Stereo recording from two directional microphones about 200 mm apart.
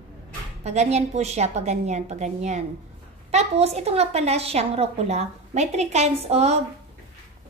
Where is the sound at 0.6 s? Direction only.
35° right (ahead or behind).